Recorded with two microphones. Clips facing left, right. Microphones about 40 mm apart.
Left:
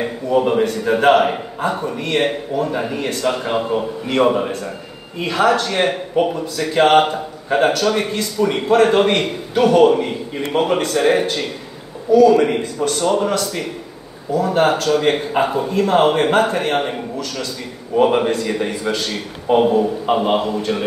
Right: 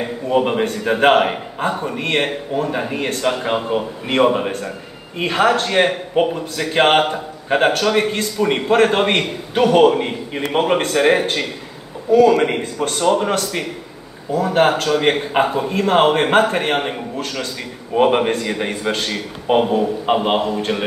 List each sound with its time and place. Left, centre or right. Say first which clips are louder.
0.3 s a man's voice: left 1 dB; right
4.1 s a man's voice: even; right
5.2 s a man's voice: even; right
17.9 s a man's voice: even; right